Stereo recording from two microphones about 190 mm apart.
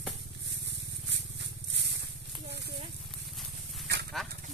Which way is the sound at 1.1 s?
65° right (ahead or behind).